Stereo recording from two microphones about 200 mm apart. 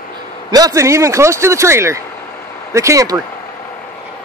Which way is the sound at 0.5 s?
20° right (ahead or behind).